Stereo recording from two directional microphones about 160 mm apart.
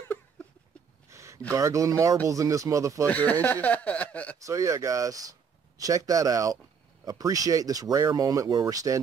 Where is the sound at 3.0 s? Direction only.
10° left (ahead or behind).